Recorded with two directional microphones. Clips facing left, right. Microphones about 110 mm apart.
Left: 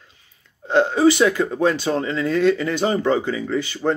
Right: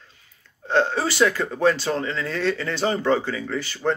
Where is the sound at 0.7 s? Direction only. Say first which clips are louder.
Left 6 dB; 15° left (ahead or behind).